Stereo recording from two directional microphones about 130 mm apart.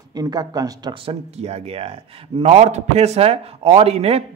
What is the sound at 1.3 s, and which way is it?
A man's voice, 50° right (ahead or behind).